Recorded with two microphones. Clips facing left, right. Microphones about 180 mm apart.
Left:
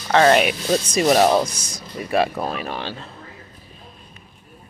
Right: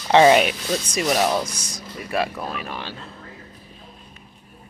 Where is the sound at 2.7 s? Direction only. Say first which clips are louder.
Left 4 dB; 75° left (ahead or behind).